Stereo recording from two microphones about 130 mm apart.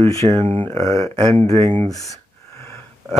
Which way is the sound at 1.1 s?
40° right (ahead or behind).